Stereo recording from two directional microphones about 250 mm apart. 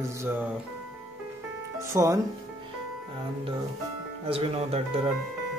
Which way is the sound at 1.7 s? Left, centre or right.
Centre.